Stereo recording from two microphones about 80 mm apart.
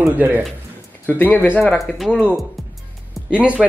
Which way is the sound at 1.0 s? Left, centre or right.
Left.